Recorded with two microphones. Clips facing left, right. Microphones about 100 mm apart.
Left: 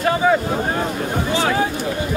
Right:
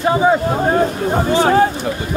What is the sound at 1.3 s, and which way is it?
Speech, 45° right (ahead or behind).